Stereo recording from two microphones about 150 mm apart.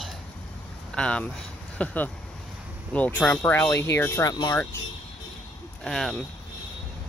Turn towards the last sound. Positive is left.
turn(degrees=0)  # may be behind; listen again after turning